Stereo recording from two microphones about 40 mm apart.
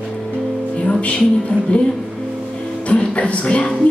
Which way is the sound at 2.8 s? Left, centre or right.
Left.